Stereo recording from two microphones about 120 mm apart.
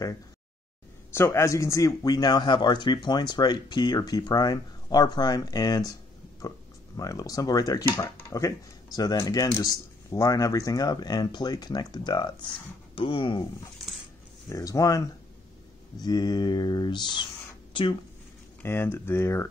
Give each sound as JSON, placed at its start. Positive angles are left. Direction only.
{"t": 1.1, "sound": "speech", "side_deg": 20}
{"t": 7.0, "sound": "speech", "side_deg": 30}
{"t": 14.5, "sound": "speech", "side_deg": 25}
{"t": 18.6, "sound": "speech", "side_deg": 20}